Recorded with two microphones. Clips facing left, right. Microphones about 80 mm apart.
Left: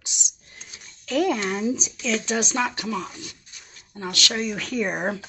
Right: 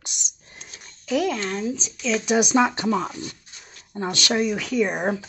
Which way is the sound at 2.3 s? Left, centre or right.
Centre.